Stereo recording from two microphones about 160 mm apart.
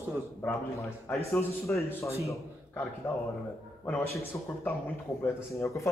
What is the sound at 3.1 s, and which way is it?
Speech, 15° left (ahead or behind).